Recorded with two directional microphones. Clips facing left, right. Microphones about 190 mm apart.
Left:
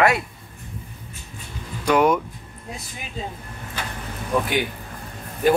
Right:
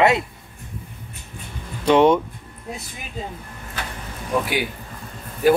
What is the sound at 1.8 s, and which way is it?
Speech, 25° right (ahead or behind).